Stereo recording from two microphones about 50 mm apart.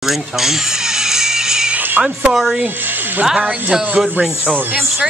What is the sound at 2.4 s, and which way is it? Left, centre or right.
Speech, right.